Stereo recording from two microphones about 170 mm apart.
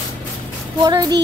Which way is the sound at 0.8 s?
20° right (ahead or behind).